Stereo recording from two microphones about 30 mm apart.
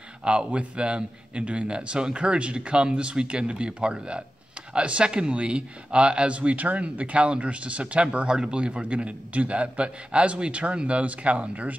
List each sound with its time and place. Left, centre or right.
0.2 s a man's voice: right
8.3 s a man's voice: right